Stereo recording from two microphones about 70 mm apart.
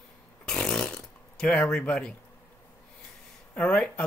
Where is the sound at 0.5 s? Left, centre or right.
Centre.